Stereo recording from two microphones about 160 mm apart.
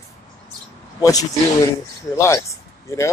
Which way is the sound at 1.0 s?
20° left (ahead or behind).